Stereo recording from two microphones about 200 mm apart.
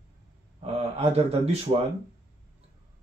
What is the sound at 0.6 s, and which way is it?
A man's voice, 30° right (ahead or behind).